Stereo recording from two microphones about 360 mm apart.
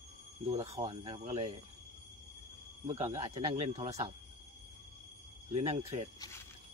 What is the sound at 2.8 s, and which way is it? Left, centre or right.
Speech, centre.